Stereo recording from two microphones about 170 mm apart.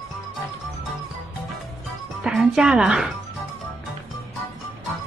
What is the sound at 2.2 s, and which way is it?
Speech, 5° right (ahead or behind).